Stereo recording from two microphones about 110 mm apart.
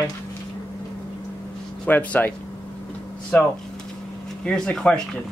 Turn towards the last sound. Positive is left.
turn(degrees=10)  # may be behind; listen again after turning